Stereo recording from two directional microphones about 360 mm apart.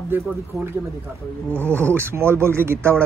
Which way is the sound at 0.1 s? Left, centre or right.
Centre.